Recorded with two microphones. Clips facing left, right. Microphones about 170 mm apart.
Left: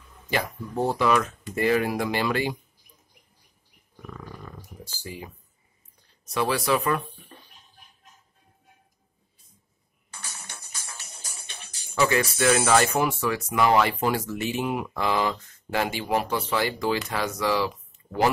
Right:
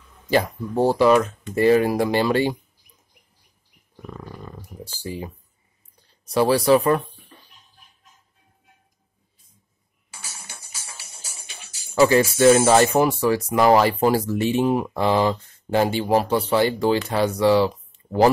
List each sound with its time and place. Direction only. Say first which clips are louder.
0.3 s speech: right 8 dB; 30° right (ahead or behind)
4.1 s wild animals: right 4 dB; 30° right (ahead or behind)
6.2 s speech: right 8 dB; 35° right (ahead or behind)
10.1 s music: even; 10° right (ahead or behind)
11.9 s speech: right 7 dB; 30° right (ahead or behind)